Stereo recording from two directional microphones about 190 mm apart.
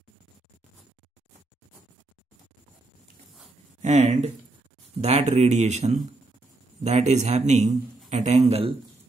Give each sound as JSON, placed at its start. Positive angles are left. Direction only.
{"t": 3.8, "sound": "speech", "side_deg": -35}